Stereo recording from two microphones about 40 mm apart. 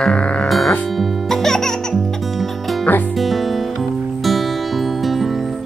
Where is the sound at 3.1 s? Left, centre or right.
Centre.